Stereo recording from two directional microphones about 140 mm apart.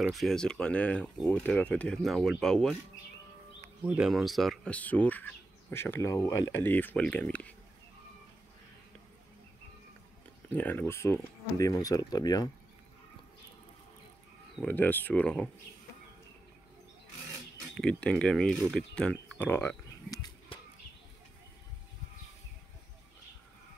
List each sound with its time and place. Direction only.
0.0 s speech: centre (ahead or behind)
3.8 s speech: 10° right (ahead or behind)
4.1 s speech: centre (ahead or behind)
10.5 s speech: 10° left (ahead or behind); by 12.4 s 30° left (ahead or behind)
14.6 s speech: 10° left (ahead or behind)
17.7 s speech: 5° left (ahead or behind)
20.1 s bird: 30° left (ahead or behind)